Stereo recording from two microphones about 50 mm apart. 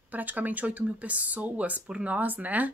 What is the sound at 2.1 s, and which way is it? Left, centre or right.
Speech, right.